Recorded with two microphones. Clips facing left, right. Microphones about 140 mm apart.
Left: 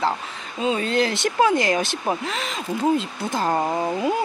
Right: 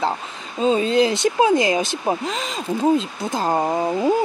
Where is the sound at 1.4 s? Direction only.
20° right (ahead or behind).